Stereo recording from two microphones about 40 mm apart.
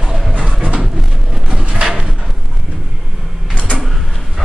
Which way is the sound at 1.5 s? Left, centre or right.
Centre.